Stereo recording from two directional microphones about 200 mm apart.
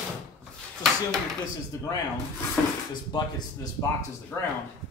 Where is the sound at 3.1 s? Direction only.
25° left (ahead or behind).